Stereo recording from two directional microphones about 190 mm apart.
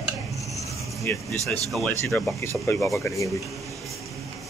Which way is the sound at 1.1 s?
10° left (ahead or behind).